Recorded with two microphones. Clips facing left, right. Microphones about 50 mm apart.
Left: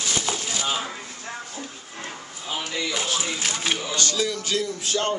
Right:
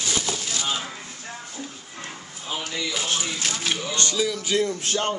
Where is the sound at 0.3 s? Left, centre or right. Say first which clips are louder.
Left 1 dB; centre.